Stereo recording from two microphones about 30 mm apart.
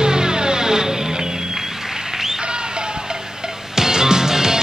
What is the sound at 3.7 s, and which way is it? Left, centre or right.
Music, centre.